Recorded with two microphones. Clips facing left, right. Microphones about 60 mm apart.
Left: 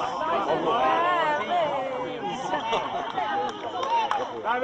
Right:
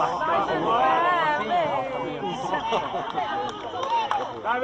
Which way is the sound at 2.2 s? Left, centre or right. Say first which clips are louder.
Right 1 dB; centre.